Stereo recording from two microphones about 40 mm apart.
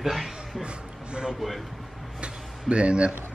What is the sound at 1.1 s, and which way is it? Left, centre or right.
Speech, right.